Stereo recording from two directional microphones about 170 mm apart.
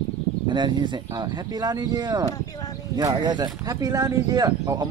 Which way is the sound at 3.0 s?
25° right (ahead or behind).